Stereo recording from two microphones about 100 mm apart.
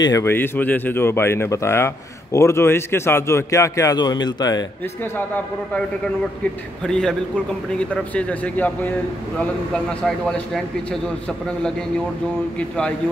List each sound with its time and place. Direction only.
0.2 s speech: 20° left (ahead or behind)
4.0 s speech: 45° left (ahead or behind)
6.9 s a man's voice: 10° left (ahead or behind)
10.0 s a man's voice: 5° left (ahead or behind)